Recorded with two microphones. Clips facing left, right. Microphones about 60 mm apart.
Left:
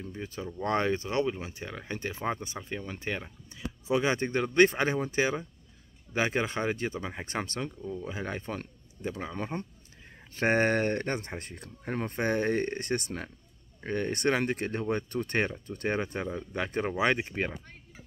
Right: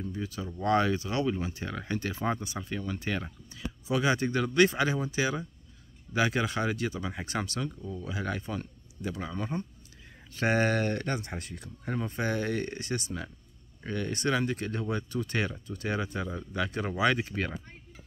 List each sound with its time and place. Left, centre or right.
0.1 s speech: left
17.0 s speech: left